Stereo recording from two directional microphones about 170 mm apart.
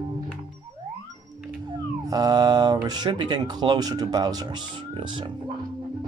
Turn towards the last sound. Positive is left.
turn(degrees=-25)  # may be behind; listen again after turning